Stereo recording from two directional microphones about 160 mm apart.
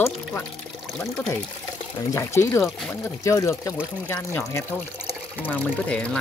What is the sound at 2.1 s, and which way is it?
Speech, 15° left (ahead or behind).